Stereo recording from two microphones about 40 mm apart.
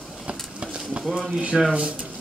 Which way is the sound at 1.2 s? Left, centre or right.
Right.